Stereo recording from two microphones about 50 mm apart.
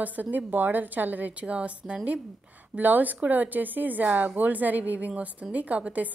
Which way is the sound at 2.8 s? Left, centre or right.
Right.